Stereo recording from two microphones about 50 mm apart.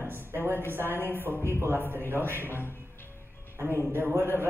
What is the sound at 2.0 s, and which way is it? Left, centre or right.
Speech, right.